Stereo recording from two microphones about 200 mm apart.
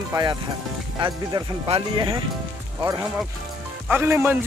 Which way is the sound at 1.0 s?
25° right (ahead or behind).